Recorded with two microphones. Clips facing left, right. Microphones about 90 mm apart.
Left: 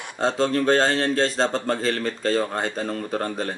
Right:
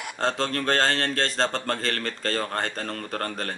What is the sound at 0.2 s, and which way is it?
Speech, 5° left (ahead or behind).